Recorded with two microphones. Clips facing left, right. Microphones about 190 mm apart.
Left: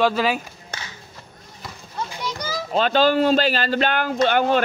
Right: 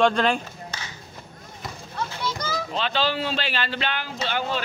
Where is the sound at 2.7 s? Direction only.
45° left (ahead or behind).